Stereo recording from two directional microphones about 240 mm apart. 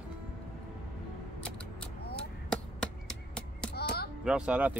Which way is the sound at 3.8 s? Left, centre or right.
Left.